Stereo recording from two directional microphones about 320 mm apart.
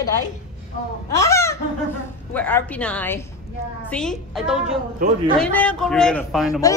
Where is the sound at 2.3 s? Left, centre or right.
Centre.